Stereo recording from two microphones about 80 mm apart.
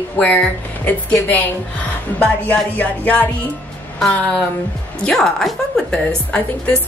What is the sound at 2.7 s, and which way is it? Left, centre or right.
Speech, centre.